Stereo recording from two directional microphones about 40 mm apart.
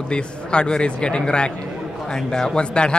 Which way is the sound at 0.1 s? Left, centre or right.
Left.